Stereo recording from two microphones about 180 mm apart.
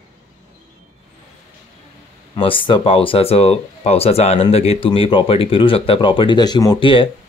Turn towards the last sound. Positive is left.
turn(degrees=30)  # may be behind; listen again after turning